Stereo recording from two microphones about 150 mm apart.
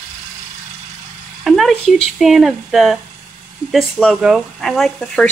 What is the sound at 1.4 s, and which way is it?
Speech, centre (ahead or behind).